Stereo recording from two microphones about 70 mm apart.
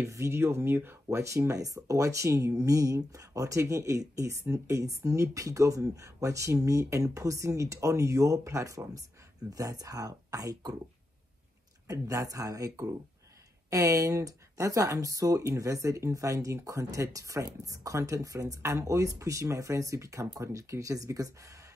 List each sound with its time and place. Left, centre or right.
0.0 s speech: right
1.0 s speech: right
11.9 s speech: right